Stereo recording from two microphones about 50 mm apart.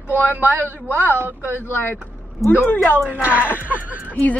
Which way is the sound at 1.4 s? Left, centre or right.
Left.